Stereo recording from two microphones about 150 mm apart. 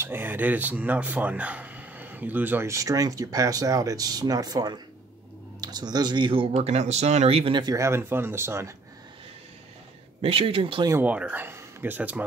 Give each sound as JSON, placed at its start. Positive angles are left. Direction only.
{"t": 0.0, "sound": "speech", "side_deg": -15}
{"t": 10.2, "sound": "speech", "side_deg": -40}
{"t": 10.9, "sound": "speech", "side_deg": -10}